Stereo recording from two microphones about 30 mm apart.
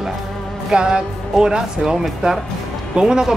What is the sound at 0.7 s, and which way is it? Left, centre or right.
Speech, right.